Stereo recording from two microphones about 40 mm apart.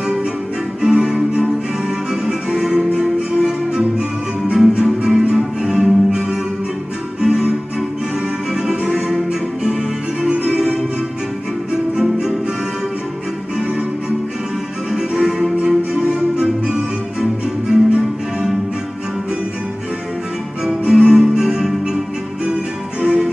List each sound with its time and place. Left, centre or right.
0.8 s music: centre
8.6 s music: centre
15.0 s music: centre
20.6 s music: centre
23.0 s music: right